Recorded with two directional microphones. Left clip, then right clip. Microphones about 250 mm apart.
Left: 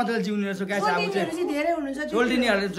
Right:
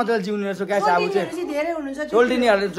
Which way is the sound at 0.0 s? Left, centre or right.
Centre.